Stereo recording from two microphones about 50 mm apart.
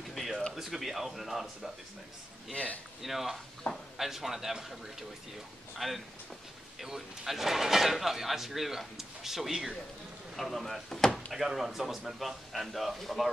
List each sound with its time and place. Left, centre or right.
0.1 s a sound: centre
0.6 s speech: centre
2.5 s a man's voice: left
3.0 s speech: centre
3.6 s a man's voice: left
4.0 s speech: centre
5.8 s speech: centre
10.3 s speech: centre
11.3 s speech: centre